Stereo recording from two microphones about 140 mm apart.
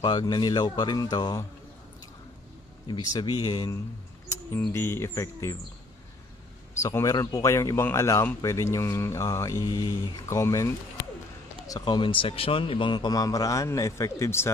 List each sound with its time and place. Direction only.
0.0 s speech: 30° left (ahead or behind)
2.9 s speech: 30° left (ahead or behind)
4.6 s speech: 15° left (ahead or behind)
6.8 s speech: 20° left (ahead or behind)